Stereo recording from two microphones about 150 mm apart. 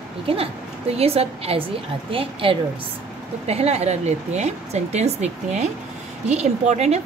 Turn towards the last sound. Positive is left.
turn(degrees=-50)  # may be behind; listen again after turning